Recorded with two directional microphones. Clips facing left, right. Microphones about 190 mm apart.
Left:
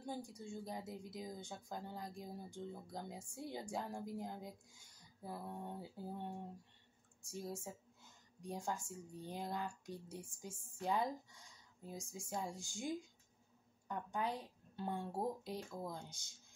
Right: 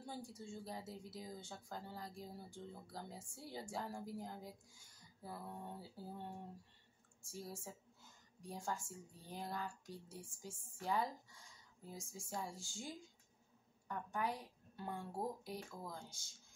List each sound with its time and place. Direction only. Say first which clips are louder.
0.0 s a woman's voice: left 3 dB; 15° left (ahead or behind)